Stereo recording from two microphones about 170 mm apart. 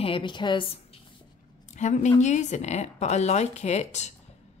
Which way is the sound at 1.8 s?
45° left (ahead or behind).